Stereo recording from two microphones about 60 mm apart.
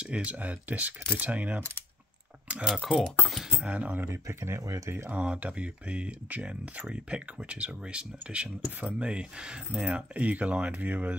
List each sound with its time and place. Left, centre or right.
0.0 s speech: right
2.6 s speech: centre
3.6 s speech: right
4.1 s speech: right
5.1 s speech: right